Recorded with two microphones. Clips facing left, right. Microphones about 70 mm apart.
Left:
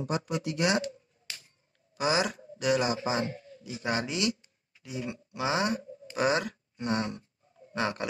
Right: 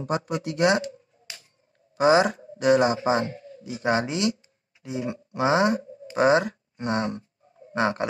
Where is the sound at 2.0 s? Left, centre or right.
Right.